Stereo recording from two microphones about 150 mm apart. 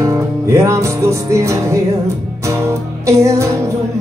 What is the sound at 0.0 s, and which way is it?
Music, 20° right (ahead or behind).